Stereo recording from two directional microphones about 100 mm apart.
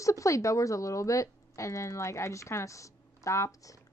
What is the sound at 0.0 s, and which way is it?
A woman's voice, 30° left (ahead or behind).